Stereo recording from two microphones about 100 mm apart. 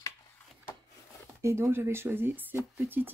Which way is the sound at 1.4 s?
25° right (ahead or behind).